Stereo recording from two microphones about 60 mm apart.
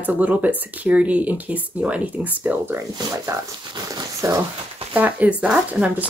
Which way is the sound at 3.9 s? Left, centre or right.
Right.